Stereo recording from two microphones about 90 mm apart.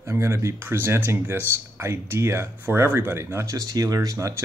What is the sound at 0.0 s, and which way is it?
Speech, 30° right (ahead or behind).